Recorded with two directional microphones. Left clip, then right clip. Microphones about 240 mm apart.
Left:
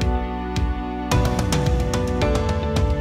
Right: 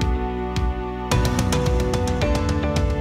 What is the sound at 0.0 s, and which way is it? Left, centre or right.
Music, centre.